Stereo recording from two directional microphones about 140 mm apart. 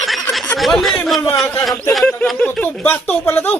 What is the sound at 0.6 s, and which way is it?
Speech, centre (ahead or behind).